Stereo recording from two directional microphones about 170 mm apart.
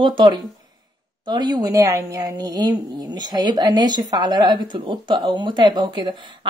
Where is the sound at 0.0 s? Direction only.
30° right (ahead or behind).